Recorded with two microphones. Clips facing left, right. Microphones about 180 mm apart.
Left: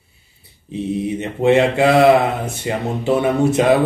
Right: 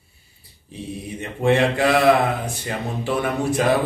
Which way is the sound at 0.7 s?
20° left (ahead or behind).